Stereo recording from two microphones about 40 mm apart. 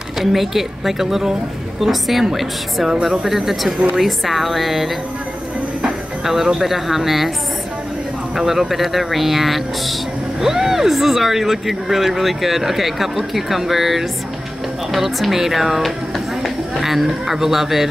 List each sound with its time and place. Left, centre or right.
0.2 s speech: centre
2.9 s speech: centre
3.3 s speech: centre
6.2 s speech: centre
8.4 s speech: centre